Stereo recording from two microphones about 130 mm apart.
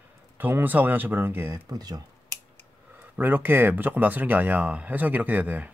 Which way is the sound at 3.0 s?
15° right (ahead or behind).